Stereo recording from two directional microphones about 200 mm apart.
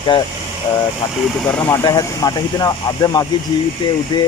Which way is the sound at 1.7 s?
20° left (ahead or behind).